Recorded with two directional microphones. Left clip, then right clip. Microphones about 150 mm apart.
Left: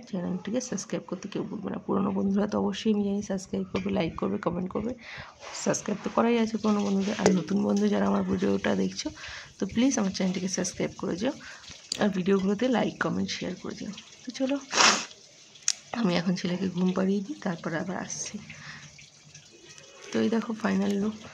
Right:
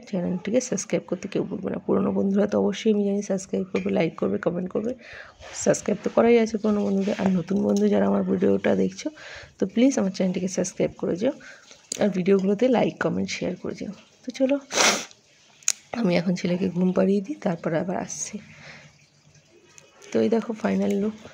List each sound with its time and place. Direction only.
0.1 s speech: 30° right (ahead or behind); by 5.7 s 10° right (ahead or behind)
5.7 s speech: 25° right (ahead or behind)
20.1 s speech: 25° right (ahead or behind)